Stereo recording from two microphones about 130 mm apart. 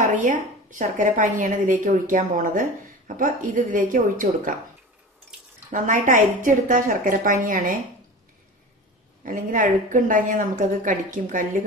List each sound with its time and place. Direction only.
0.0 s a woman's voice: 85° right
5.7 s a woman's voice: 85° right
9.2 s a woman's voice: 90° right